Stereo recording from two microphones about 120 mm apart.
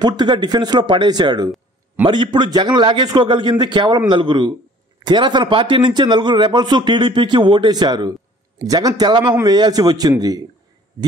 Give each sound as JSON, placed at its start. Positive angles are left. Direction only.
{"t": 0.0, "sound": "speech", "side_deg": -40}